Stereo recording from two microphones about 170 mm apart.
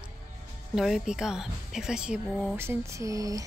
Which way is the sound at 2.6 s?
15° right (ahead or behind).